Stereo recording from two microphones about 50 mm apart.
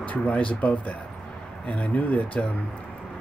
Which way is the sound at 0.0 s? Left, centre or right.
Left.